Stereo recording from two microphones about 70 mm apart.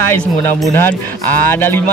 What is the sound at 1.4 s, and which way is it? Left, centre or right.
Speech, left.